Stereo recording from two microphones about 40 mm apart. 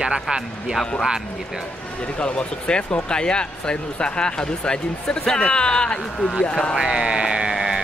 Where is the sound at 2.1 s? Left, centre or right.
Left.